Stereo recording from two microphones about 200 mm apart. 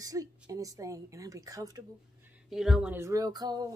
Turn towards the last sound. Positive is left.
turn(degrees=-20)  # may be behind; listen again after turning